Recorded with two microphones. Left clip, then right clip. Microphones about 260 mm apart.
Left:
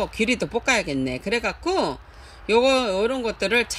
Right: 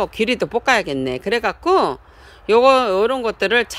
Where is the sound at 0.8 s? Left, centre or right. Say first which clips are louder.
Right 4 dB; right.